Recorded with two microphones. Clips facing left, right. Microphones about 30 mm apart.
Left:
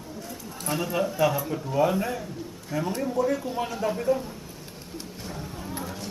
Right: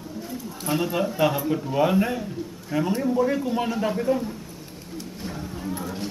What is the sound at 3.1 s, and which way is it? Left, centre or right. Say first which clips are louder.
Speech: right 1 dB; right.